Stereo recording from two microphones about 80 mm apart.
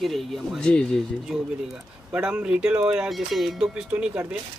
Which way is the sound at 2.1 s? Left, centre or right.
Centre.